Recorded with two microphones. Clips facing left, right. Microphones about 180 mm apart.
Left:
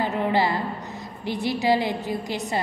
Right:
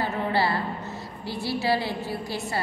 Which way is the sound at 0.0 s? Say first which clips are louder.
Left 3 dB; 15° left (ahead or behind).